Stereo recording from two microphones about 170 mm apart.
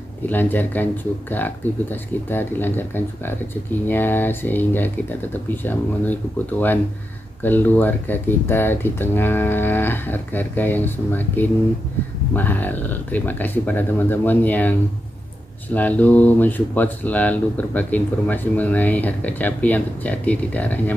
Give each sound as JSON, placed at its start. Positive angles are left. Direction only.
{"t": 0.3, "sound": "speech", "side_deg": 10}
{"t": 7.4, "sound": "speech", "side_deg": 10}